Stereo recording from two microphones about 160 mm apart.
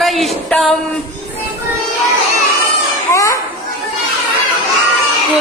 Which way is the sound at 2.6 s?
20° left (ahead or behind).